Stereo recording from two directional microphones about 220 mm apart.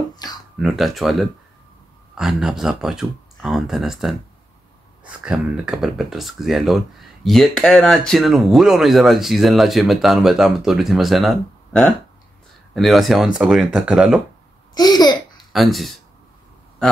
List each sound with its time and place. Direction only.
0.1 s a sound: 20° left (ahead or behind)
0.6 s speech: centre (ahead or behind)
14.7 s babbling: 15° left (ahead or behind)
15.5 s speech: centre (ahead or behind)